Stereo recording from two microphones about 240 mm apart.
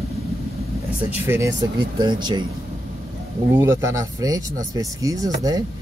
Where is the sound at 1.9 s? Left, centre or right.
Centre.